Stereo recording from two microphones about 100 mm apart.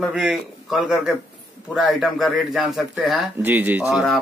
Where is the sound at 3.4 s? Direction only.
20° right (ahead or behind).